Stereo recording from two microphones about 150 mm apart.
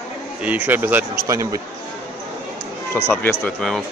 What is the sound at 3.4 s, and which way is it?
Speech, centre (ahead or behind).